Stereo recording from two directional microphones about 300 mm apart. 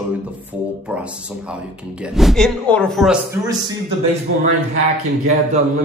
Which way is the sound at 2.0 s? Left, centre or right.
Centre.